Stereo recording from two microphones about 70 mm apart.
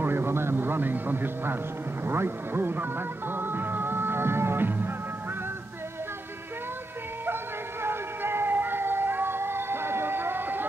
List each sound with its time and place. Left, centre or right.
0.0 s a sound: right
2.0 s speech: right
3.3 s music: right
7.8 s music: right